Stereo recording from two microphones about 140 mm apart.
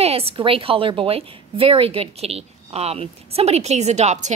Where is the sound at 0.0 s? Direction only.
45° right (ahead or behind).